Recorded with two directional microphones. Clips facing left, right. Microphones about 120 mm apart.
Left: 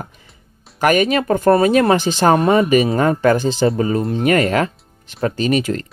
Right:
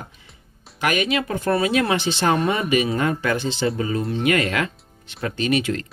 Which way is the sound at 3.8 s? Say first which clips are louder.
Left 5 dB; 40° left (ahead or behind).